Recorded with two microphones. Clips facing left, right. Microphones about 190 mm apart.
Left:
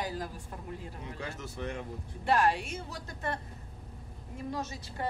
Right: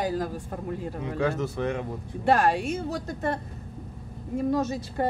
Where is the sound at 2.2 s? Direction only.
45° right (ahead or behind).